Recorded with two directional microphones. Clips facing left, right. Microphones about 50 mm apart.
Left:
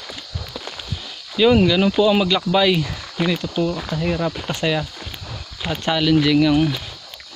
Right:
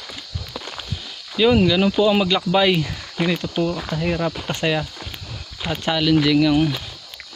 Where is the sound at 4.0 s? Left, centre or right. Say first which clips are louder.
Even; centre.